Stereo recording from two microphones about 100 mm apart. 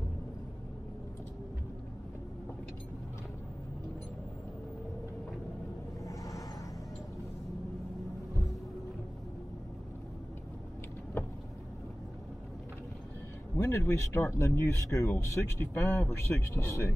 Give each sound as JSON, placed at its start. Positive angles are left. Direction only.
{"t": 6.0, "sound": "vehicle", "side_deg": 35}
{"t": 13.6, "sound": "speech", "side_deg": 25}